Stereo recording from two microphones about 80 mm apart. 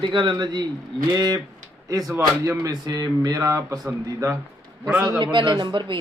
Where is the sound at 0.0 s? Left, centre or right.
Right.